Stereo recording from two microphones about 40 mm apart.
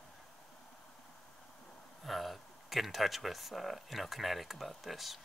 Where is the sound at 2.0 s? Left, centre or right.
Centre.